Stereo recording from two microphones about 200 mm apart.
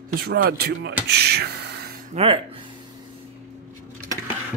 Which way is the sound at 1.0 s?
55° right (ahead or behind).